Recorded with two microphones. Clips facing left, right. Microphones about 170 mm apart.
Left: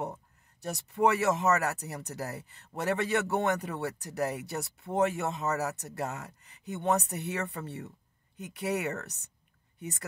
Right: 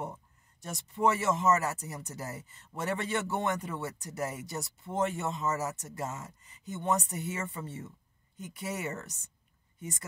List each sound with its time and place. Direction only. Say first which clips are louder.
0.6 s speech: left 4 dB; 65° left (ahead or behind)